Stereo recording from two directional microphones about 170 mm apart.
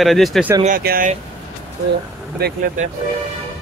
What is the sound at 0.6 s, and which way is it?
Speech, 55° right (ahead or behind).